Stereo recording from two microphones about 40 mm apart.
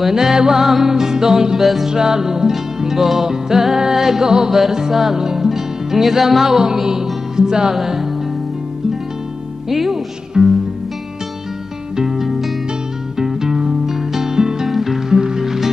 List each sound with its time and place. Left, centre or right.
0.0 s music: centre
1.6 s music: centre
1.9 s music: centre
9.7 s speech: centre
10.4 s music: centre
12.0 s music: centre